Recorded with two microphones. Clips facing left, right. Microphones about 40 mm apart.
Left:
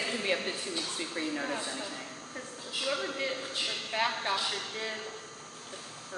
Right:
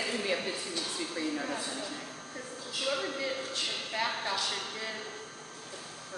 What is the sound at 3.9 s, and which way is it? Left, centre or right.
Speech, left.